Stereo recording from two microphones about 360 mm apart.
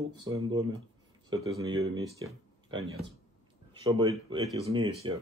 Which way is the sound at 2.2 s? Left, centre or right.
Centre.